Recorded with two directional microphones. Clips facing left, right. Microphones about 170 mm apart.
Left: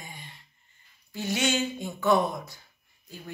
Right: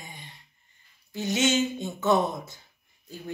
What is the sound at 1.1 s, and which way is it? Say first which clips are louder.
A woman's voice: right 3 dB; 20° right (ahead or behind).